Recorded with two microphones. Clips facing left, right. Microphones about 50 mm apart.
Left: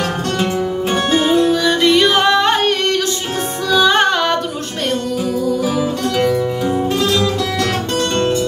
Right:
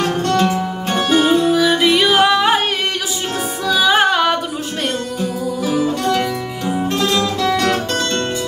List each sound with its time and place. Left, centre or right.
0.0 s music: centre
3.7 s music: centre
5.7 s music: centre